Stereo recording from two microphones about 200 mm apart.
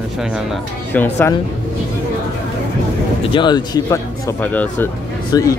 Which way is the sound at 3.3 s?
20° left (ahead or behind).